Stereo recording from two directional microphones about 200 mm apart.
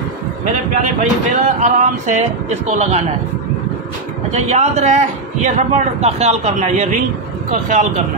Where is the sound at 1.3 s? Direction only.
35° right (ahead or behind).